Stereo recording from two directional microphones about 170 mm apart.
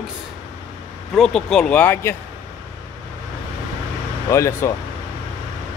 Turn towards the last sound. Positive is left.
turn(degrees=15)  # may be behind; listen again after turning